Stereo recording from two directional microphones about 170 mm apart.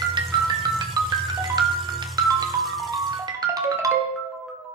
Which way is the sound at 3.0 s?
25° right (ahead or behind).